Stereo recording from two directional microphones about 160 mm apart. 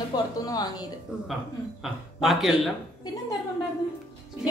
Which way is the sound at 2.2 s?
Centre (ahead or behind).